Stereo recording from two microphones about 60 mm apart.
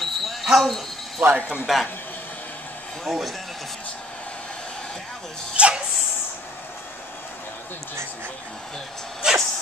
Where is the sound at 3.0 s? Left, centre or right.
Centre.